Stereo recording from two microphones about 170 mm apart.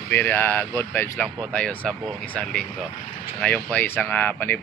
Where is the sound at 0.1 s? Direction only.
10° left (ahead or behind).